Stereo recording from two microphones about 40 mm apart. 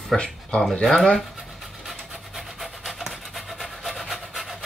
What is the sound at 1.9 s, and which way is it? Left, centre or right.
Pant, centre.